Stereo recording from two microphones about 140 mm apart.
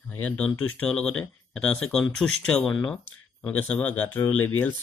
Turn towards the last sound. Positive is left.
turn(degrees=10)  # may be behind; listen again after turning